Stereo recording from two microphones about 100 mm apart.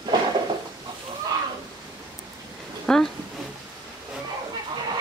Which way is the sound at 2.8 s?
5° left (ahead or behind).